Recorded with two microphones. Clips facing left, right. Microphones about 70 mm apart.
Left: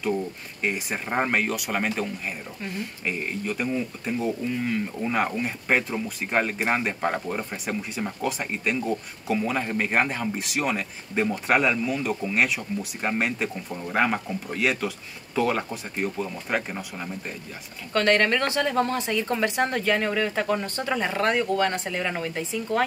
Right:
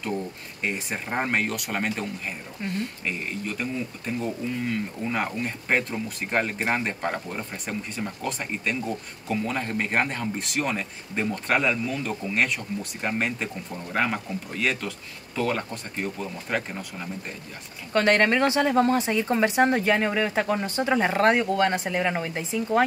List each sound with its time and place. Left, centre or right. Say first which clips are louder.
0.6 s speech: left 2 dB; centre
3.1 s speech: left 2 dB; centre
17.9 s speech: right 1 dB; right
21.1 s speech: right 4 dB; right
21.4 s speech: right 1 dB; centre